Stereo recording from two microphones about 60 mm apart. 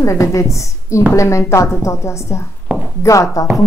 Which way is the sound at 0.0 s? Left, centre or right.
Left.